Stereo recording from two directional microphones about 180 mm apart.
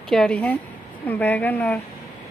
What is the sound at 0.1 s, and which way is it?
Speech, 5° left (ahead or behind).